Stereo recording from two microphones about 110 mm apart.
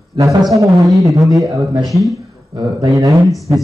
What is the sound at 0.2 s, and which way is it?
Speech, 30° right (ahead or behind).